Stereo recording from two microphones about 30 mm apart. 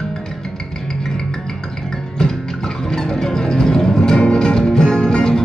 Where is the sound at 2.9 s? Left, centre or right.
Centre.